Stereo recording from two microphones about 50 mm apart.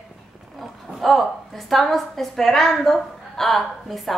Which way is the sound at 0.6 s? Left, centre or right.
Centre.